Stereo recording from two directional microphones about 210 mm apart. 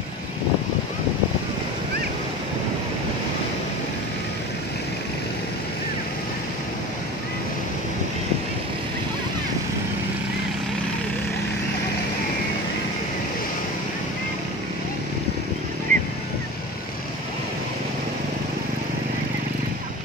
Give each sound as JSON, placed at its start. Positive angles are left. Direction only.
{"t": 15.9, "sound": "vehicle", "side_deg": -40}